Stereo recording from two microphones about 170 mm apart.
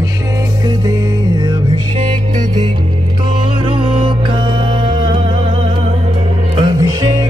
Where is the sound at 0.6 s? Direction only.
25° right (ahead or behind).